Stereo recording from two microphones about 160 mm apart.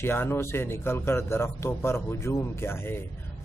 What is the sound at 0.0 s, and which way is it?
Speech, 15° left (ahead or behind).